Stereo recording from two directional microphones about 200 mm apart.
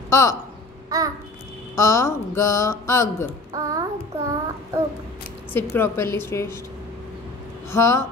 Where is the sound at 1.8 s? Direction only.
15° left (ahead or behind).